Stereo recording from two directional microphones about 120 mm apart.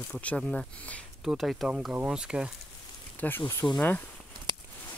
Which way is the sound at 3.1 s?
15° left (ahead or behind).